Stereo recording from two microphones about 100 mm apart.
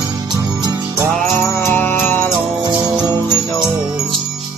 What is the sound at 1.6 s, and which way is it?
Music, 25° left (ahead or behind).